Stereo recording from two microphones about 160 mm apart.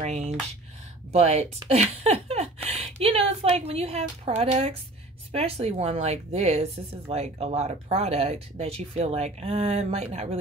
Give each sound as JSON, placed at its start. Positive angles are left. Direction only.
{"t": 0.0, "sound": "a woman's voice", "side_deg": -50}